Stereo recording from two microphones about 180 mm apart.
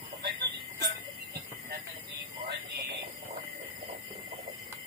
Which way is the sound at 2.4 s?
70° right (ahead or behind).